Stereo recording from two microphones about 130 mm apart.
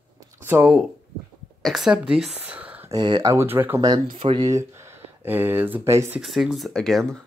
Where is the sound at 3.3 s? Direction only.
15° right (ahead or behind).